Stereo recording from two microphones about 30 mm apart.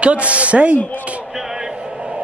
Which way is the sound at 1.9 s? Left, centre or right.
Right.